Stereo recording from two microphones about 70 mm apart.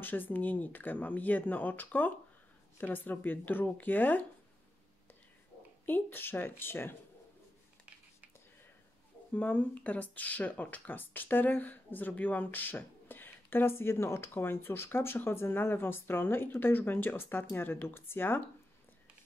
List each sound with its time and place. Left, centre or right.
0.0 s speech: left
5.9 s speech: left
9.3 s speech: left